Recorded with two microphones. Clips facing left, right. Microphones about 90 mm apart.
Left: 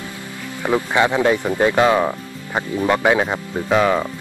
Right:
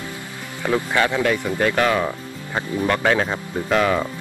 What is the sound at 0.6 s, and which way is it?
Speech, 20° left (ahead or behind).